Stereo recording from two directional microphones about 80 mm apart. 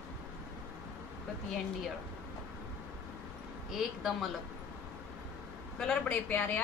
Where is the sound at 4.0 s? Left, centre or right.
Centre.